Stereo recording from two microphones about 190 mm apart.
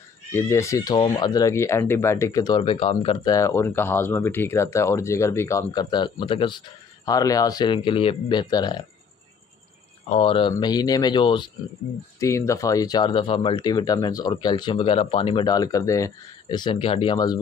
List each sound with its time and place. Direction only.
0.3 s speech: 15° left (ahead or behind)
10.0 s speech: 30° left (ahead or behind)